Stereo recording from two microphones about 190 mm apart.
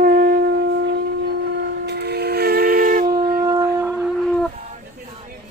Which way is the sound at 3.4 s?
15° right (ahead or behind).